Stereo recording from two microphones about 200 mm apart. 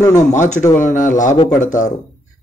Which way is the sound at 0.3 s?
40° left (ahead or behind).